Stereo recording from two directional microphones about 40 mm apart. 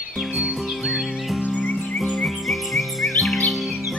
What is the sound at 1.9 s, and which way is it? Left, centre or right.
Chirp, centre.